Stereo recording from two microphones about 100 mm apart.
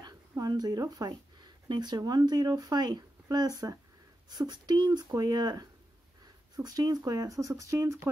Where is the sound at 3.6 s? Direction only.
30° right (ahead or behind).